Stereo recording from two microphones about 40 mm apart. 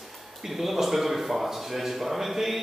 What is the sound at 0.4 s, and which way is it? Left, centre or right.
Speech, centre.